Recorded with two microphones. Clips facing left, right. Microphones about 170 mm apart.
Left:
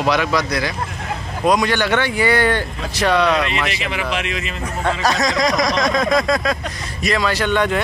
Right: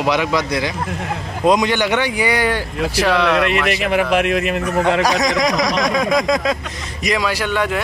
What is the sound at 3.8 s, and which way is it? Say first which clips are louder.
A man's voice: right 7 dB; 55° right (ahead or behind).